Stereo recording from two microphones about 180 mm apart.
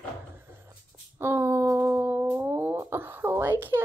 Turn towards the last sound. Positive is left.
turn(degrees=-10)  # may be behind; listen again after turning